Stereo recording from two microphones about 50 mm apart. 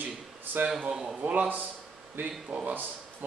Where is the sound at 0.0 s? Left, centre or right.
Right.